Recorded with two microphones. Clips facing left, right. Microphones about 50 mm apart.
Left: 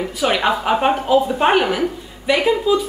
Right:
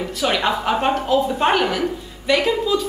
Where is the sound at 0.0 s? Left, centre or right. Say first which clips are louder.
Left 2 dB; centre.